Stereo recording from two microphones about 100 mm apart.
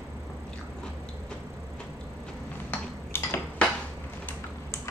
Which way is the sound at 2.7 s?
25° left (ahead or behind).